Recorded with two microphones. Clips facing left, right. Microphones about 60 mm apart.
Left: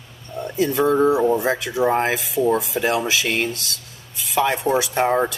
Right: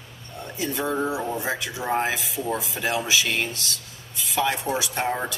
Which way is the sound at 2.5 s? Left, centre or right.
Centre.